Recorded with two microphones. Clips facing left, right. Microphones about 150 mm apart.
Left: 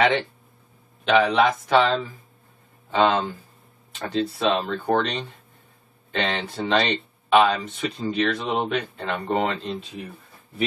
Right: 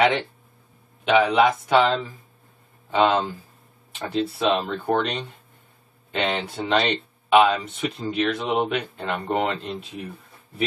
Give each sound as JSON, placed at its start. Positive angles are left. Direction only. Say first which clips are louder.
{"t": 1.0, "sound": "speech", "louder": "right 1 dB", "side_deg": -5}